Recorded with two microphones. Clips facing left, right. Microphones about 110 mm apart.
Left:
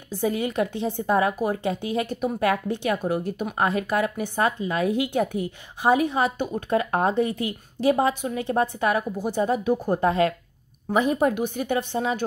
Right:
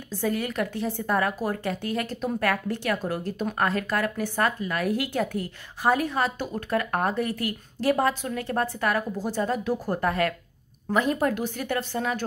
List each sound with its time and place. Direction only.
0.1 s a woman's voice: 15° left (ahead or behind)